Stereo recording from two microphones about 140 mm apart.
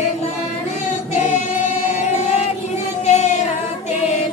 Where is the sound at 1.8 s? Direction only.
55° left (ahead or behind).